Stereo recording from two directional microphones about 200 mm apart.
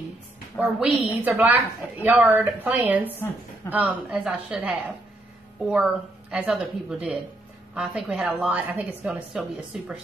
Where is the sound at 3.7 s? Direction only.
5° right (ahead or behind).